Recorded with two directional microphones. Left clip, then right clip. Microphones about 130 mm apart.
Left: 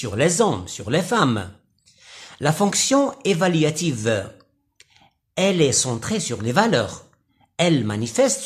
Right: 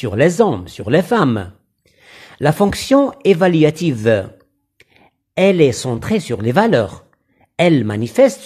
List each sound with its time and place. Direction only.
0.0 s speech: 45° right (ahead or behind)
0.7 s a sound: 50° right (ahead or behind)
2.7 s speech: 50° right (ahead or behind)
4.7 s clicking: 55° right (ahead or behind)
5.9 s speech: 50° right (ahead or behind)